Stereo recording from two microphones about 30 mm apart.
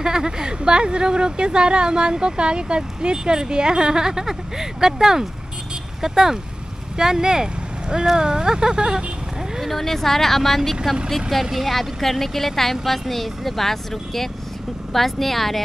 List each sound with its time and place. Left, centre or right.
0.0 s speech: right
9.6 s speech: centre